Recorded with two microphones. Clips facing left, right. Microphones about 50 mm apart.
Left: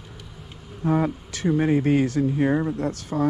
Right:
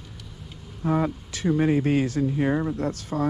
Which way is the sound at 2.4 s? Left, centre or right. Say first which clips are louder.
Left 2 dB; left.